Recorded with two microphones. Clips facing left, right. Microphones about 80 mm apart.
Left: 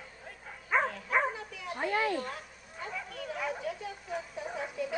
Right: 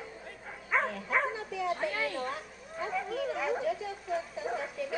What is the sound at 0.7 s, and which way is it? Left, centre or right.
Bow-wow, centre.